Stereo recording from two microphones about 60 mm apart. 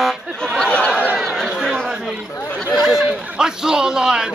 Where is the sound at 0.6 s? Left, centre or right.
Centre.